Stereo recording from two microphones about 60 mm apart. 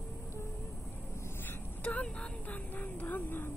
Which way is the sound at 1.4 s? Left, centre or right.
Left.